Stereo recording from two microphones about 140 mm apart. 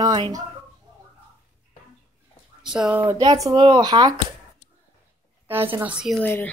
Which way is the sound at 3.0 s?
25° right (ahead or behind).